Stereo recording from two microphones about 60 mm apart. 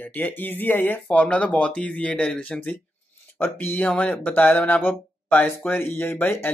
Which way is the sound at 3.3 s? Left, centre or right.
Left.